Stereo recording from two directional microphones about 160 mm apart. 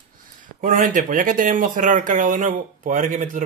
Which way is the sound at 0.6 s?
55° right (ahead or behind).